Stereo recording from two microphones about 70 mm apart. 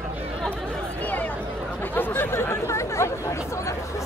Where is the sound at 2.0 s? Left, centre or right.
Left.